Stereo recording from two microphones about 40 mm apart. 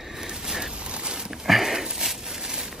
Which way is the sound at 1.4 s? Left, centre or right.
Centre.